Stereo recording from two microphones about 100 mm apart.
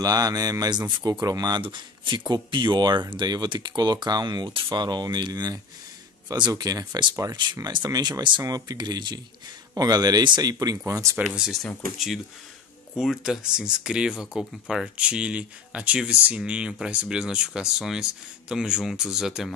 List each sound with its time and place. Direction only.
0.0 s speech: 40° right (ahead or behind)
1.6 s speech: 50° right (ahead or behind)
10.9 s speech: 30° right (ahead or behind)
11.3 s speech: 5° right (ahead or behind)